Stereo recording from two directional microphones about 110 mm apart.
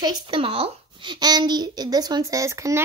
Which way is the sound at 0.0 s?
50° right (ahead or behind).